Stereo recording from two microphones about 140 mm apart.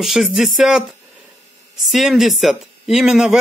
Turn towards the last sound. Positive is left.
turn(degrees=-5)  # may be behind; listen again after turning